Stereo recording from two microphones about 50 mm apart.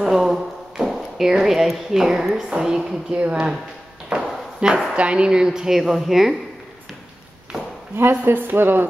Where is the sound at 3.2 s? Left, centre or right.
Right.